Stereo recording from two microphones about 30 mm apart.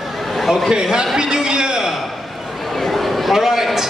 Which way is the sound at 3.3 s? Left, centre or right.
Centre.